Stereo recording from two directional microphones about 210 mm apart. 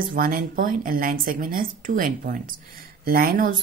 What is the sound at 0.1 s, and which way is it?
A woman's voice, 45° right (ahead or behind).